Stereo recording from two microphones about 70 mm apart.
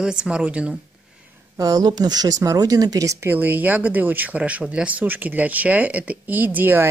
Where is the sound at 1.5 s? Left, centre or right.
Right.